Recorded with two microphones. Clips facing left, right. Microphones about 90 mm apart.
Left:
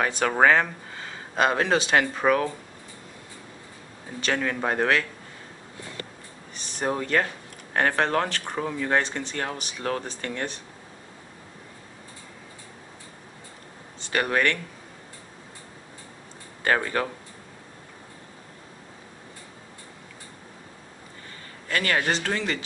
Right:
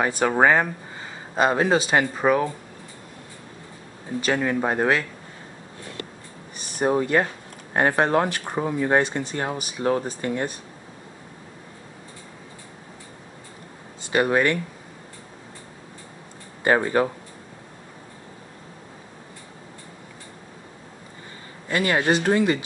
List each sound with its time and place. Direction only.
0.2 s speech: 15° right (ahead or behind)
4.2 s speech: 10° right (ahead or behind)
6.8 s speech: 15° right (ahead or behind)
14.1 s speech: 15° right (ahead or behind)
16.6 s speech: 20° right (ahead or behind)
21.6 s speech: 20° right (ahead or behind)